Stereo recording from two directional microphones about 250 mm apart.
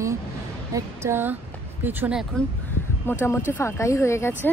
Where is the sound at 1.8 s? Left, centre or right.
Centre.